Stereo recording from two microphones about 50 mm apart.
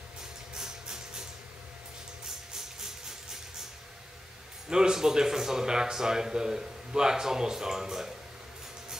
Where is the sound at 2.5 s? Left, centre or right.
Centre.